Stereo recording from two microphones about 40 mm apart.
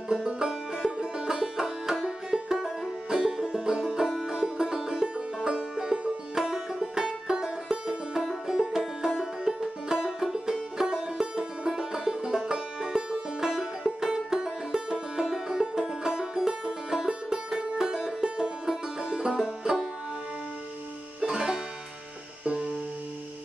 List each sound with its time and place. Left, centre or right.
0.1 s music: centre
21.2 s music: centre